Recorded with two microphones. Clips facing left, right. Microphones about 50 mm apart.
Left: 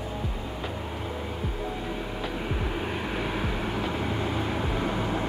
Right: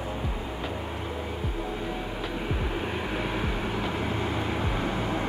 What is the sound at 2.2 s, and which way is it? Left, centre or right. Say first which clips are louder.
Vehicle: even; centre.